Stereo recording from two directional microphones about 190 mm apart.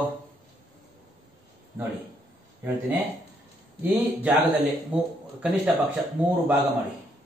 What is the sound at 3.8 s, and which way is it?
Speech, 10° right (ahead or behind).